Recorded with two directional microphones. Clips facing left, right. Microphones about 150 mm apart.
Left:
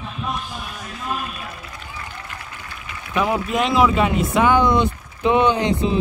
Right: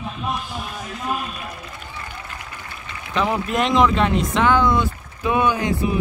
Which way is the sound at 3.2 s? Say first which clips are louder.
Left 1 dB; 5° left (ahead or behind).